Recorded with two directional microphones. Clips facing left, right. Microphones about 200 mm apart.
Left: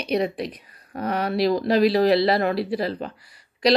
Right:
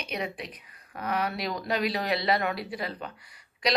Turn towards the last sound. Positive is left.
turn(degrees=35)  # may be behind; listen again after turning